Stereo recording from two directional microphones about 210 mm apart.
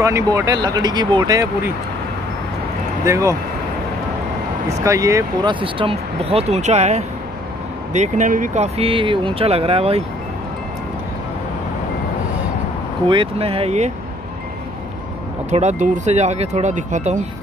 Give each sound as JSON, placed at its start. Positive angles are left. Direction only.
{"t": 0.0, "sound": "speech", "side_deg": -15}
{"t": 3.1, "sound": "speech", "side_deg": -15}
{"t": 4.8, "sound": "speech", "side_deg": -15}
{"t": 13.0, "sound": "speech", "side_deg": -25}
{"t": 15.5, "sound": "speech", "side_deg": -35}